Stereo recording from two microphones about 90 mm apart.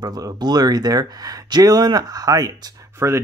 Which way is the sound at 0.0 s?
45° right (ahead or behind).